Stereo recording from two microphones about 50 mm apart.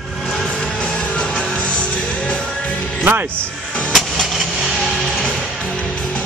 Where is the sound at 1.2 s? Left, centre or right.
Left.